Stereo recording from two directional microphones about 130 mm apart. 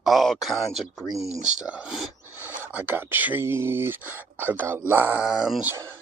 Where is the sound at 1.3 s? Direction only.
60° right (ahead or behind).